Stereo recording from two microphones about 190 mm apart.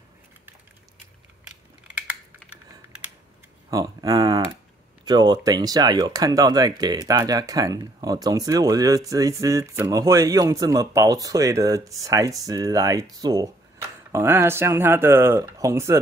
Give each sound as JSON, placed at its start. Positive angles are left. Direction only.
{"t": 3.7, "sound": "speech", "side_deg": -20}